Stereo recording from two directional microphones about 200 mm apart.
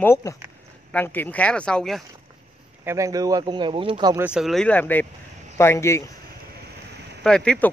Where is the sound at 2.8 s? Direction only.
15° right (ahead or behind).